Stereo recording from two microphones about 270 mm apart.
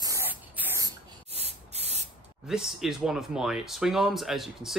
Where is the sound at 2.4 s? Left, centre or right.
Centre.